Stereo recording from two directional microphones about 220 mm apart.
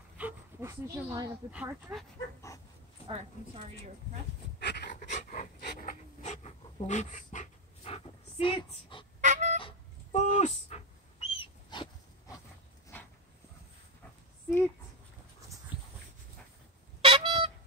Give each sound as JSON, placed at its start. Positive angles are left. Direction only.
{"t": 0.2, "sound": "dog", "side_deg": -10}
{"t": 0.9, "sound": "speech", "side_deg": -10}
{"t": 3.1, "sound": "a woman's voice", "side_deg": -25}
{"t": 4.6, "sound": "dog", "side_deg": 50}
{"t": 5.0, "sound": "pant", "side_deg": 35}
{"t": 9.2, "sound": "a sound", "side_deg": -35}
{"t": 9.6, "sound": "a sound", "side_deg": 30}
{"t": 15.7, "sound": "dog", "side_deg": 20}
{"t": 17.0, "sound": "a sound", "side_deg": -25}